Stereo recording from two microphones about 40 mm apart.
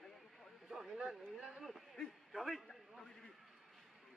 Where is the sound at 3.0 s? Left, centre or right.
Centre.